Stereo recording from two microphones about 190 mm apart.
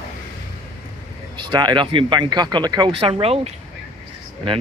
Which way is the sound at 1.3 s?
25° right (ahead or behind).